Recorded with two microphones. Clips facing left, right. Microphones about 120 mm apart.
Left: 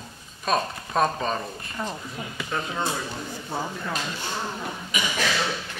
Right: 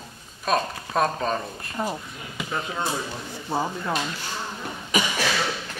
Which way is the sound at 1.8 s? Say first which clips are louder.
Right 2 dB; 10° right (ahead or behind).